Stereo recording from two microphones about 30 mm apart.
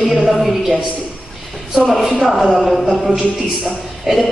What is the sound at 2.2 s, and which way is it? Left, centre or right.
Speech, centre.